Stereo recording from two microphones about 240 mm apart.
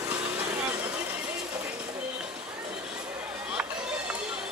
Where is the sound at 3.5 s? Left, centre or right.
Centre.